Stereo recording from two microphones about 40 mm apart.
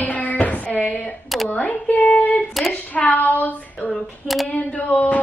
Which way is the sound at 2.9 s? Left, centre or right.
Left.